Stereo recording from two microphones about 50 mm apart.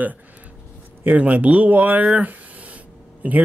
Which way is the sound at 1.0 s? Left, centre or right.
Right.